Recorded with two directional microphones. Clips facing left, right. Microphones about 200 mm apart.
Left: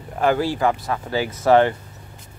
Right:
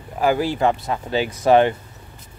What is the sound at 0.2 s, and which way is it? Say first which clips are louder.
Speech: right 1 dB; 15° right (ahead or behind).